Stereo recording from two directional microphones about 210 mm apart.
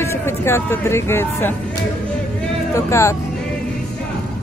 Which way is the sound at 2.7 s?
15° left (ahead or behind).